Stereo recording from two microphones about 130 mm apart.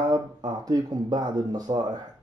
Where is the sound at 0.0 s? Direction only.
30° right (ahead or behind).